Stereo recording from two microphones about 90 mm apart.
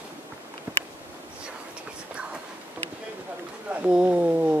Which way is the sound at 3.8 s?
15° right (ahead or behind).